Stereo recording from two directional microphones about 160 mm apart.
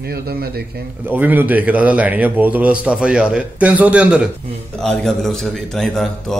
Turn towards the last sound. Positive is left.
turn(degrees=0)  # may be behind; listen again after turning